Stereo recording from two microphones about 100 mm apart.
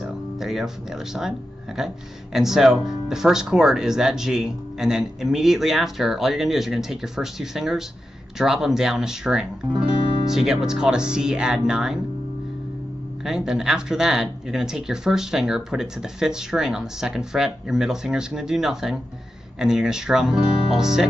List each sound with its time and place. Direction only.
0.0 s speech: 5° right (ahead or behind)
13.5 s speech: 5° right (ahead or behind)